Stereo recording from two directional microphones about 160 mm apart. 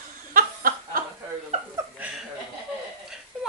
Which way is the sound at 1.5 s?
40° right (ahead or behind).